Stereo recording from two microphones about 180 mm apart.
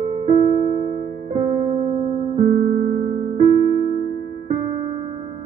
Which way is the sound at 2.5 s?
45° right (ahead or behind).